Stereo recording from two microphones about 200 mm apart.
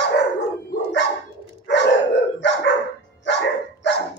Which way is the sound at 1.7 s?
60° left (ahead or behind).